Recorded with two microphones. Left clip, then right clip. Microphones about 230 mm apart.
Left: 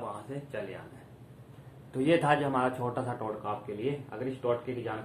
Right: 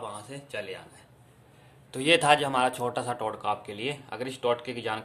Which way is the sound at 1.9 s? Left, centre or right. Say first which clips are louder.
Right 4 dB; right.